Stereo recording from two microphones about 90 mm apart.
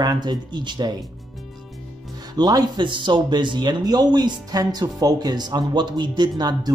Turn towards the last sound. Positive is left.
turn(degrees=-45)  # may be behind; listen again after turning